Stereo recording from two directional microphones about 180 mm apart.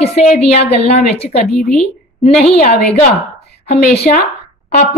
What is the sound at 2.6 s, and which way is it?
Speech, 50° left (ahead or behind).